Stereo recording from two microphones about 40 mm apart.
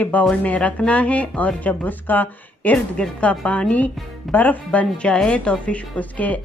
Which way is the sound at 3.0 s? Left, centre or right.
Left.